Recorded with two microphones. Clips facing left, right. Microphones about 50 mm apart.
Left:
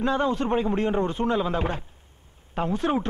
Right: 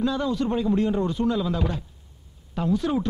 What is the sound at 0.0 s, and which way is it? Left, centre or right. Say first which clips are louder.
Speech: left 1 dB; left.